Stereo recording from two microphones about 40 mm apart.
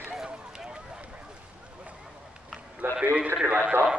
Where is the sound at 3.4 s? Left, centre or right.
Right.